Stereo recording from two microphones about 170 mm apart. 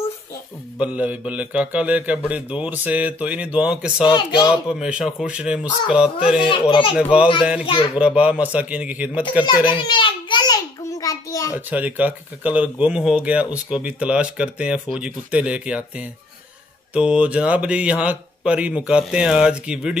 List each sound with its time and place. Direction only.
0.7 s speech: 10° right (ahead or behind)
4.0 s speech: 25° left (ahead or behind)
4.6 s speech: 5° right (ahead or behind)
6.4 s speech: 30° left (ahead or behind)
7.0 s speech: 5° right (ahead or behind)
7.6 s speech: 30° left (ahead or behind)
7.9 s speech: 5° right (ahead or behind)
9.7 s a sound: 30° left (ahead or behind)
11.5 s speech: 10° right (ahead or behind)